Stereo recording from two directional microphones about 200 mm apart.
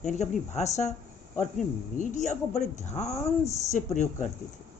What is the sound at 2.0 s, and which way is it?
A woman's voice, 40° left (ahead or behind).